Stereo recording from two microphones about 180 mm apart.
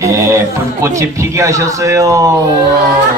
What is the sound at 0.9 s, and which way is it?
Speech, 15° right (ahead or behind).